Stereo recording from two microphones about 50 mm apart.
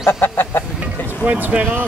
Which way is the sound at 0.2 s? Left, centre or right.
Left.